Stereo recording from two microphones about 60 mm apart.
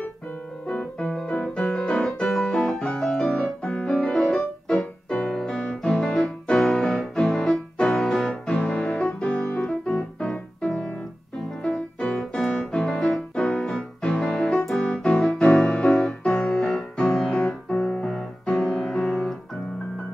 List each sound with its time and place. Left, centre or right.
0.7 s piano: centre
1.1 s music: centre
1.7 s piano: centre
5.1 s keyboard: centre
5.7 s music: centre
11.6 s piano: centre
12.7 s music: centre
14.0 s piano: centre
14.9 s music: centre